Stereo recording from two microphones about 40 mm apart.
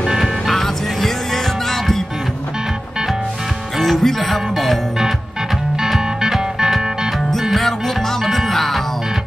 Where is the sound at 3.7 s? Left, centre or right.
Centre.